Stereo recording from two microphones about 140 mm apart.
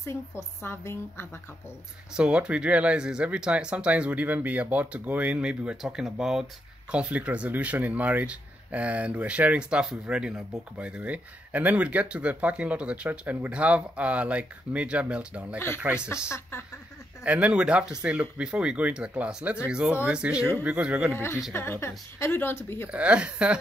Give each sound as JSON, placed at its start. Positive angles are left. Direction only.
{"t": 0.0, "sound": "a woman's voice", "side_deg": 20}
{"t": 2.1, "sound": "speech", "side_deg": -5}
{"t": 17.2, "sound": "speech", "side_deg": -10}
{"t": 21.1, "sound": "a woman's voice", "side_deg": 20}
{"t": 22.8, "sound": "speech", "side_deg": -10}